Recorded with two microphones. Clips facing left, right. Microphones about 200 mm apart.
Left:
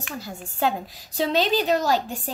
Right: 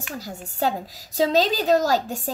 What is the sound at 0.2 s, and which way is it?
A woman's voice, 40° right (ahead or behind).